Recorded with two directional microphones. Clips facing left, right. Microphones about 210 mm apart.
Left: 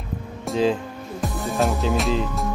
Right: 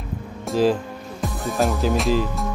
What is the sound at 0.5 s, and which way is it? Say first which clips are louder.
Speech: right 2 dB; centre (ahead or behind).